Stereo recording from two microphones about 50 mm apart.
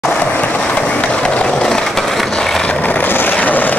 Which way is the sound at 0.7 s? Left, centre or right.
Left.